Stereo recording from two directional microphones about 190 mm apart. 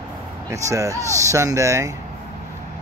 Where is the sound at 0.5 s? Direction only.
15° right (ahead or behind).